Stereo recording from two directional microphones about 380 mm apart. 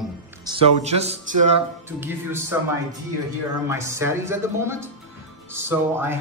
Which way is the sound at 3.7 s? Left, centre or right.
Centre.